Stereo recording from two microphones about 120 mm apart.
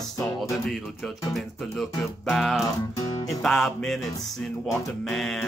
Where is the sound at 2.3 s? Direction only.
Centre (ahead or behind).